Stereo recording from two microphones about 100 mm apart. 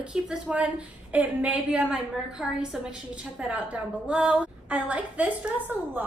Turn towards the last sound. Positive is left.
turn(degrees=-15)  # may be behind; listen again after turning